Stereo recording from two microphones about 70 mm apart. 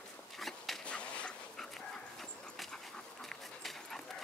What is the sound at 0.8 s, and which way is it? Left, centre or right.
Dog, centre.